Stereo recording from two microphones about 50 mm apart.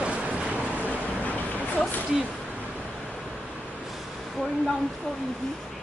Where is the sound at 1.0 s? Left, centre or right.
Left.